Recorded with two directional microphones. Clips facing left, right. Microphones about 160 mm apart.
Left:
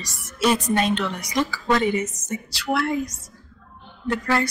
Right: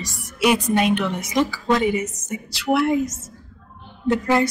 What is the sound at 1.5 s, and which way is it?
A woman's voice, 10° right (ahead or behind).